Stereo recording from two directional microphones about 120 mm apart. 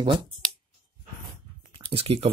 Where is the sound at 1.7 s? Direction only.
50° right (ahead or behind).